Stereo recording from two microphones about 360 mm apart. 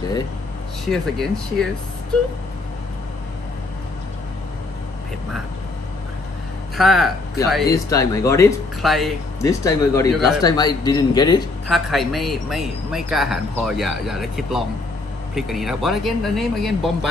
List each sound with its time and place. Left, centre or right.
0.8 s a man's voice: centre
6.8 s speech: centre
10.4 s speech: centre
11.6 s a man's voice: centre